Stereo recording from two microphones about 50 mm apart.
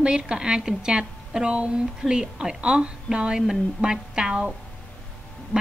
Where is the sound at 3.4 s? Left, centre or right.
Centre.